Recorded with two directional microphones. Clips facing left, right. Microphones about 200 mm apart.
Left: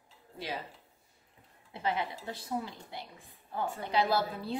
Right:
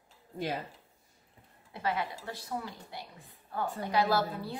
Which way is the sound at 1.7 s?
25° left (ahead or behind).